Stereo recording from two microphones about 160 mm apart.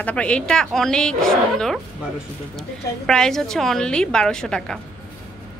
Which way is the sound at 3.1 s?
5° left (ahead or behind).